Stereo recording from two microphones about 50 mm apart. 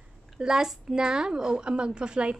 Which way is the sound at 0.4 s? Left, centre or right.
Centre.